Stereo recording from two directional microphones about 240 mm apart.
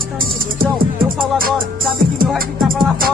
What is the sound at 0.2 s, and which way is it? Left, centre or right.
Music, right.